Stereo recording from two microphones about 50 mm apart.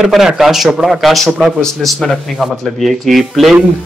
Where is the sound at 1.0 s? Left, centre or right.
Centre.